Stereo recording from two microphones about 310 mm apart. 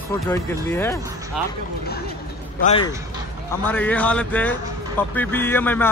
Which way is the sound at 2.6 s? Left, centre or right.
Centre.